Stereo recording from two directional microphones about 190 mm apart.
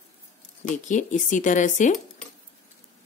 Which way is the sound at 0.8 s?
40° left (ahead or behind).